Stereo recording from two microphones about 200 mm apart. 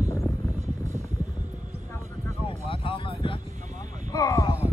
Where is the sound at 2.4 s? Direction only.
25° left (ahead or behind).